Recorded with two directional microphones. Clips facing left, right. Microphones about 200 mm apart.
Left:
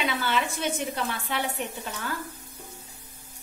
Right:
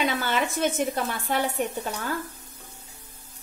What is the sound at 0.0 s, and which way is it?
A woman's voice, 45° right (ahead or behind).